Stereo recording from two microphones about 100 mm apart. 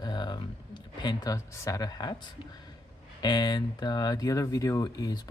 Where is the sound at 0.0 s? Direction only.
45° left (ahead or behind).